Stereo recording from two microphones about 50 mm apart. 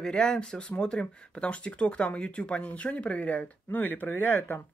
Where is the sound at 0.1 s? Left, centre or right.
Centre; by 4.6 s left.